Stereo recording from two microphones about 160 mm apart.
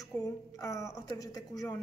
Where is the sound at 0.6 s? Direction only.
20° left (ahead or behind).